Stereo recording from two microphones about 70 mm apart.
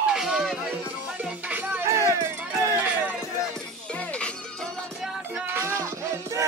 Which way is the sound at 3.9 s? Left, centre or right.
Centre.